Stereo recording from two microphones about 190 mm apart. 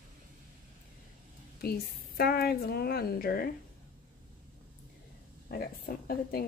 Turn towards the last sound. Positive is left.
turn(degrees=50)  # may be behind; listen again after turning